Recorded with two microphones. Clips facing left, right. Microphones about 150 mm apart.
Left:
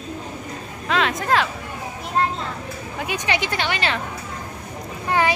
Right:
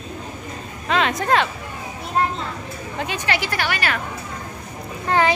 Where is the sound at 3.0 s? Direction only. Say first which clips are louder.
Even; 15° left (ahead or behind).